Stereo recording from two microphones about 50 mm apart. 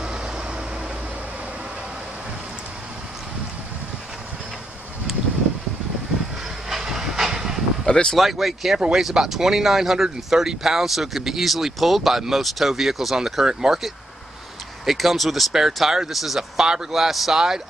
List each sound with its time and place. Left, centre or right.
0.0 s vehicle: centre
6.7 s train: centre
7.8 s speech: centre
8.2 s speech: centre
14.9 s speech: centre